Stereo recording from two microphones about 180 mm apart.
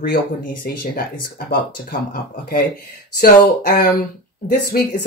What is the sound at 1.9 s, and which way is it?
Speech, 55° left (ahead or behind).